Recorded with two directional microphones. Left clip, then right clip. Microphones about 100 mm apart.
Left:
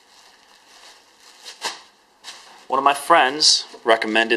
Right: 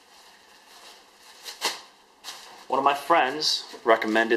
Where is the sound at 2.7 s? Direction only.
45° left (ahead or behind).